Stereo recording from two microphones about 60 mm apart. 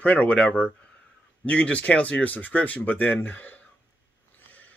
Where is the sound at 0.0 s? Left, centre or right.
Left.